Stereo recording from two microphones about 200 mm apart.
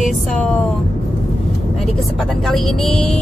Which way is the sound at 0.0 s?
5° left (ahead or behind).